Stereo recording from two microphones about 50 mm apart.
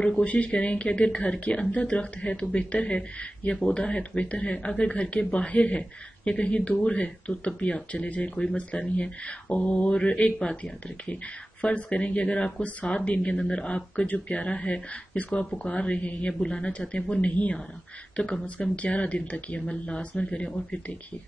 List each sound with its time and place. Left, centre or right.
0.2 s speech: left
13.0 s speech: left
16.3 s speech: centre